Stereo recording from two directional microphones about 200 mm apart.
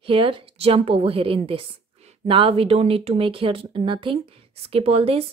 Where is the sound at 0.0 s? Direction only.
25° right (ahead or behind).